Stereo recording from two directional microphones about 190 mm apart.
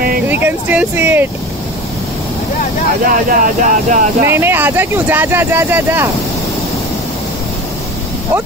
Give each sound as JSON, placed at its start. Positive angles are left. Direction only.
{"t": 0.3, "sound": "vehicle", "side_deg": -10}
{"t": 3.1, "sound": "speech", "side_deg": -45}
{"t": 4.3, "sound": "speech", "side_deg": -10}